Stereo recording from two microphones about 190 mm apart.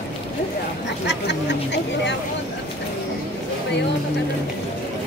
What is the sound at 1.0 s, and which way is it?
Speech, 65° left (ahead or behind).